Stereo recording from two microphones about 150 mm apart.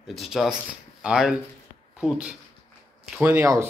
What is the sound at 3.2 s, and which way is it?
Speech, 15° right (ahead or behind).